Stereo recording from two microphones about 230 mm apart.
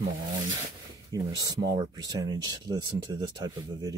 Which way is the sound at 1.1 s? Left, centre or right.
Centre.